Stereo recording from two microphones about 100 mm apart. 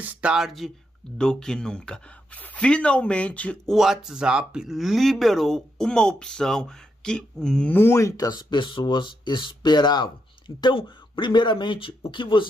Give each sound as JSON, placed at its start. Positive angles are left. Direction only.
{"t": 0.0, "sound": "speech", "side_deg": -15}
{"t": 3.6, "sound": "speech", "side_deg": -5}
{"t": 7.7, "sound": "speech", "side_deg": 25}
{"t": 8.3, "sound": "speech", "side_deg": 50}